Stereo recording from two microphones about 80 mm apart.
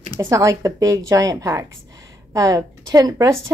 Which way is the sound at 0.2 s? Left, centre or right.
Right.